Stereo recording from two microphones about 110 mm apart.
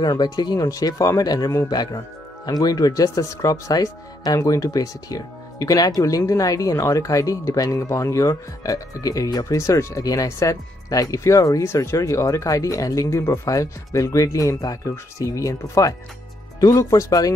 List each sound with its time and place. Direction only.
0.0 s speech: 35° left (ahead or behind)